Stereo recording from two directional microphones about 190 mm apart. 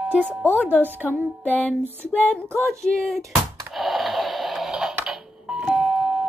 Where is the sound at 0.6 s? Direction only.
10° right (ahead or behind).